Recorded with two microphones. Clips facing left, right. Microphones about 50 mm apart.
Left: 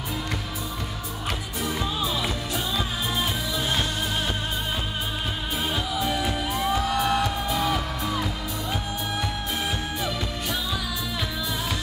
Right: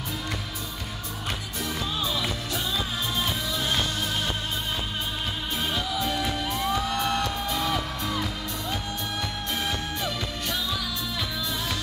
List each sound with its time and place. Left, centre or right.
1.6 s music: centre
5.6 s music: centre